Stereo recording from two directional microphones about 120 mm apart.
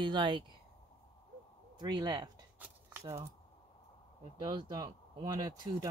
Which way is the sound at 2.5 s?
15° right (ahead or behind).